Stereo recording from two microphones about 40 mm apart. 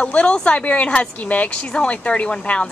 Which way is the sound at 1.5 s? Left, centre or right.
Left.